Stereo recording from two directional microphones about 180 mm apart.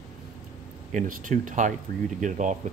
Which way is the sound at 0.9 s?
45° right (ahead or behind).